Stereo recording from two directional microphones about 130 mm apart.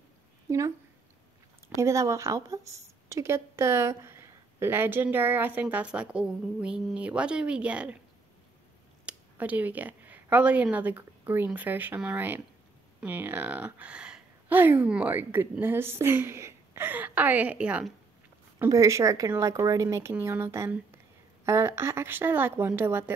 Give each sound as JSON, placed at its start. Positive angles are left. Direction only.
{"t": 0.5, "sound": "speech", "side_deg": -25}
{"t": 1.8, "sound": "a woman's voice", "side_deg": -25}
{"t": 9.0, "sound": "a woman's voice", "side_deg": -10}
{"t": 18.7, "sound": "a woman's voice", "side_deg": -25}